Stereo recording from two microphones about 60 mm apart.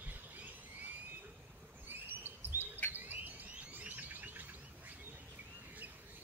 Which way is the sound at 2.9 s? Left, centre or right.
Right.